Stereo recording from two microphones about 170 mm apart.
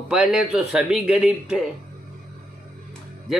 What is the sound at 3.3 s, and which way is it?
Speech, centre (ahead or behind).